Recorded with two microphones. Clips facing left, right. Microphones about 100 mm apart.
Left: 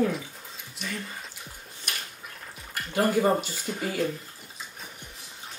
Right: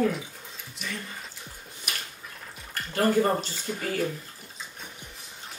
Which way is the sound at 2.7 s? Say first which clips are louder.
Right 1 dB; 10° left (ahead or behind).